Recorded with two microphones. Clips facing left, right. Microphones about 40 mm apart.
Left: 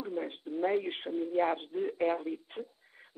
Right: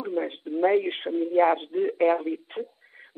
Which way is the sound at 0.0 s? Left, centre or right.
Right.